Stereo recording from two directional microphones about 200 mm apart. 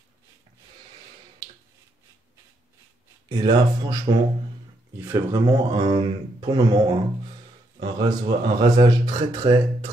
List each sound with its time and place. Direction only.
3.3 s speech: 20° right (ahead or behind)
4.9 s speech: 10° right (ahead or behind)